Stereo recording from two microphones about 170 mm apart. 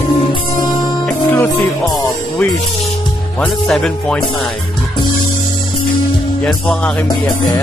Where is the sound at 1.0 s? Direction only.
10° left (ahead or behind).